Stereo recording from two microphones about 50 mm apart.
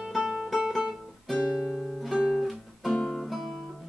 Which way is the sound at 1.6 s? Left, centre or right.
Centre.